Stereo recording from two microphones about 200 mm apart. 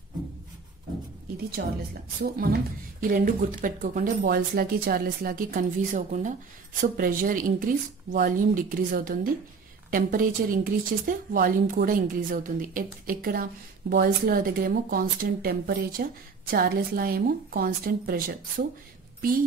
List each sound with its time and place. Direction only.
1.6 s a woman's voice: 60° right (ahead or behind)
2.3 s a woman's voice: 50° right (ahead or behind)